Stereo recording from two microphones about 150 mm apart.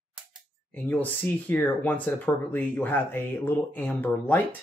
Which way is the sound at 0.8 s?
10° left (ahead or behind).